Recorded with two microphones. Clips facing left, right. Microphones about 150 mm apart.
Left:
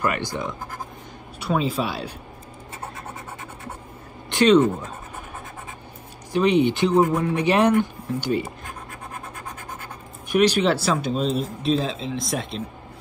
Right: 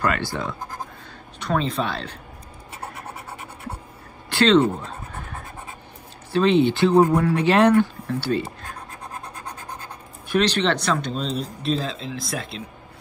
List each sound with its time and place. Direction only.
0.0 s speech: 15° left (ahead or behind)
4.3 s a sound: 15° left (ahead or behind)
6.3 s speech: 15° left (ahead or behind)
10.2 s speech: 10° left (ahead or behind)